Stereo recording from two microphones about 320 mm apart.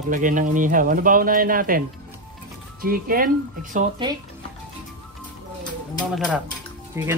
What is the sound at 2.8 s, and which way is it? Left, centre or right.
Speech, right.